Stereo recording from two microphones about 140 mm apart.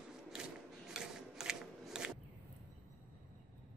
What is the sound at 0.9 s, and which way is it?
Shuffling cards, 5° right (ahead or behind).